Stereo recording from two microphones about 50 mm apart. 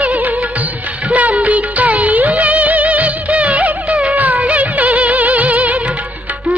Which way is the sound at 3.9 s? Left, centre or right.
Centre.